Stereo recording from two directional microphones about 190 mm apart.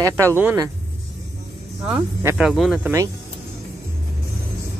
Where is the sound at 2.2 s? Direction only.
15° right (ahead or behind).